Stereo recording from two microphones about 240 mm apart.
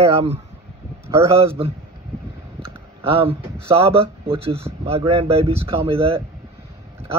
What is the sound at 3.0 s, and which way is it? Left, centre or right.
Speech, right.